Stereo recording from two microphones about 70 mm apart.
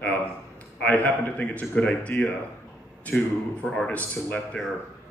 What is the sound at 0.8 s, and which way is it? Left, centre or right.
A man's voice, left.